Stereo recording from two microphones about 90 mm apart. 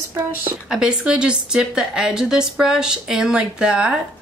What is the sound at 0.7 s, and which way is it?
A woman's voice, 10° right (ahead or behind).